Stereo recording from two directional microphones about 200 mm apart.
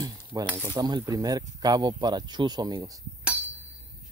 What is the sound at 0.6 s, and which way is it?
Speech, 10° right (ahead or behind).